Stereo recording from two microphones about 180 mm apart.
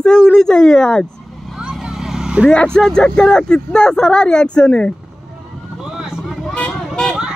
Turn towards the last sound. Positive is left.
turn(degrees=0)  # may be behind; listen again after turning